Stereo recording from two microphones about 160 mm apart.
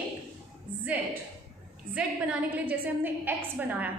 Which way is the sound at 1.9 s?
10° right (ahead or behind).